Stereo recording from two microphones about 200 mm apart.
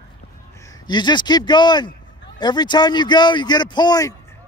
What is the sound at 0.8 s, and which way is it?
Speech, 20° left (ahead or behind).